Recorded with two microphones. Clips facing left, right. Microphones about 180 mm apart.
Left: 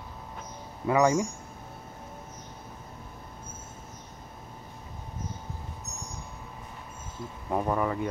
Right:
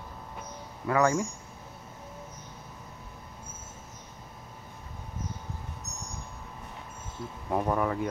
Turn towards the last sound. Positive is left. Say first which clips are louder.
# even
turn(degrees=0)  # may be behind; listen again after turning